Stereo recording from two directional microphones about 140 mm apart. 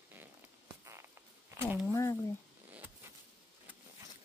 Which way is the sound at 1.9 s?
20° left (ahead or behind).